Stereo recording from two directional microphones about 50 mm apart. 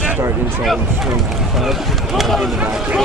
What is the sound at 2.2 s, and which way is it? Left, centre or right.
Speech, centre.